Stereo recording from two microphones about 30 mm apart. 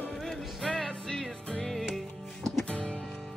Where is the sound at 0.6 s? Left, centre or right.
Left.